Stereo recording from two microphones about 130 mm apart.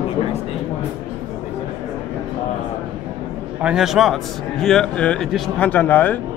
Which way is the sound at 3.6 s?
5° right (ahead or behind).